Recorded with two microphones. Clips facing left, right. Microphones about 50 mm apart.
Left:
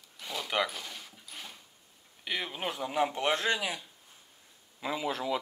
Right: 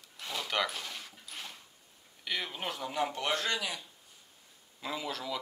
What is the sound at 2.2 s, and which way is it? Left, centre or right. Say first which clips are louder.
Speech: left 2 dB; centre.